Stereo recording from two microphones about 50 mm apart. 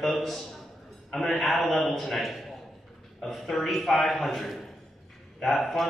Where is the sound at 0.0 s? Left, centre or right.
Centre.